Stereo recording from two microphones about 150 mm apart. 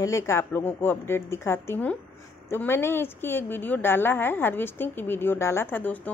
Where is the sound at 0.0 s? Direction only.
20° left (ahead or behind).